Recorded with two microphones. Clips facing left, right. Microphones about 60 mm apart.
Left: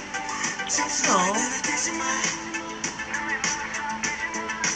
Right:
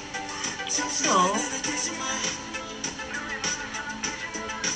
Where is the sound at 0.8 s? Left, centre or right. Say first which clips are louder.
Even; centre.